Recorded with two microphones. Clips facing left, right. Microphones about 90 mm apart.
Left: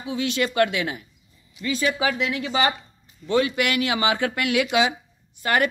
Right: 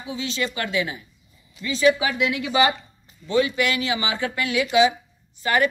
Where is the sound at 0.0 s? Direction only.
60° left (ahead or behind); by 2.7 s 35° left (ahead or behind).